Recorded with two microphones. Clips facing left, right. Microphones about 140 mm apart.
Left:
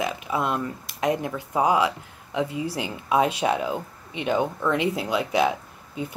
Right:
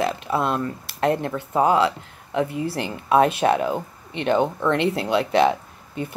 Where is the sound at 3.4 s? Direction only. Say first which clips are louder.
Right 4 dB; 60° right (ahead or behind).